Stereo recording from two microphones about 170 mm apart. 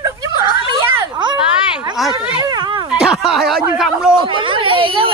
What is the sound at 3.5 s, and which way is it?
Speech, centre (ahead or behind).